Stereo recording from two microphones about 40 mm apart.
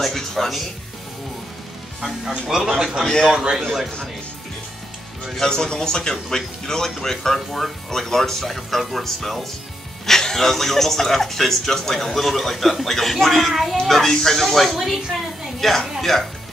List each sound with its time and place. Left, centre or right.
0.0 s speech: centre
2.2 s speech: centre
3.0 s speech: centre
3.3 s speech: centre
5.4 s speech: centre